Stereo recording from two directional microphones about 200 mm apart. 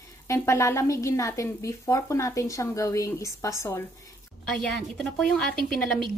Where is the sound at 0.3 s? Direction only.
15° left (ahead or behind).